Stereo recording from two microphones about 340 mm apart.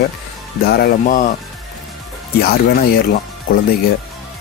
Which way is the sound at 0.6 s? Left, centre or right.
Left.